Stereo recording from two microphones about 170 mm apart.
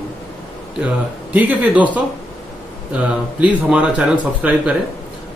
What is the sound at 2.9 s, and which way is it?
A man's voice, 5° right (ahead or behind).